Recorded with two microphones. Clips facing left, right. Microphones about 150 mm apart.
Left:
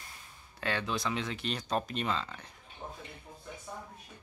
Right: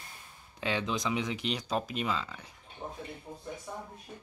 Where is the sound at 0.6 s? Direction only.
15° right (ahead or behind).